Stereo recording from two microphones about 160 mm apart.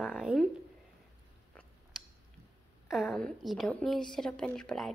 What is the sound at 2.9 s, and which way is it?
Speech, centre (ahead or behind).